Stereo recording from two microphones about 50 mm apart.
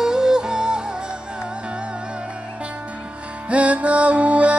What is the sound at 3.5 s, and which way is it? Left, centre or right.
Music, right.